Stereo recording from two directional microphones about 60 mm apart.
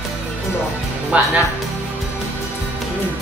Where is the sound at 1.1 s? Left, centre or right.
Right.